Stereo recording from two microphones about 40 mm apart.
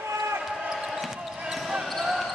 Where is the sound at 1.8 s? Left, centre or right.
Centre.